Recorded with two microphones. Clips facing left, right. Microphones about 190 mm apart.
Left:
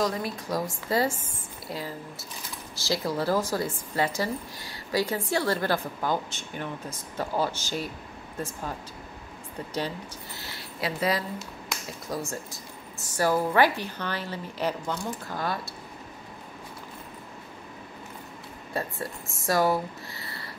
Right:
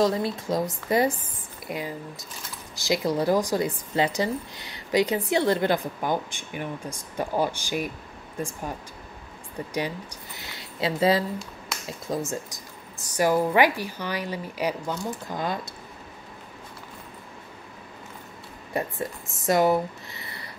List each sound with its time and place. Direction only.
0.0 s a woman's voice: 25° right (ahead or behind)
9.8 s speech: 15° right (ahead or behind)
18.7 s speech: 15° right (ahead or behind)